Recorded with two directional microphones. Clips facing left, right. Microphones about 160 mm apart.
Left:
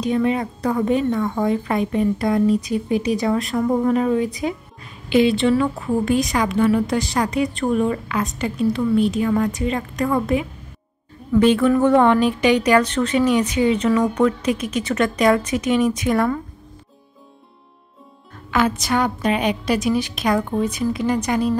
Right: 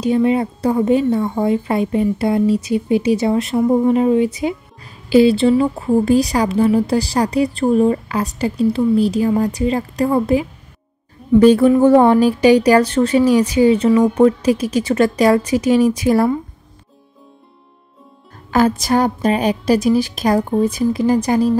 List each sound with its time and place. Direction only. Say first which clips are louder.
0.0 s a woman's voice: right 4 dB; 30° right (ahead or behind)
18.5 s a woman's voice: right 5 dB; 35° right (ahead or behind)